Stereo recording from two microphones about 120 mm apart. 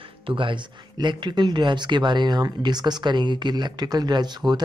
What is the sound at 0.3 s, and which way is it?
Speech, 45° right (ahead or behind).